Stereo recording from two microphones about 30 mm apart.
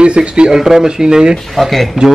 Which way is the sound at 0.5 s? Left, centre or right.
Centre.